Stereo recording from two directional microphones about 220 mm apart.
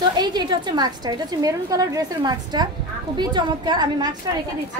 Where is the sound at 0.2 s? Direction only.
20° right (ahead or behind).